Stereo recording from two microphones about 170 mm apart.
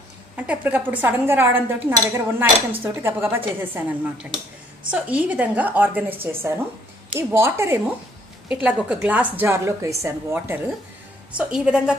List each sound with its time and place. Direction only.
0.4 s a woman's voice: 10° right (ahead or behind)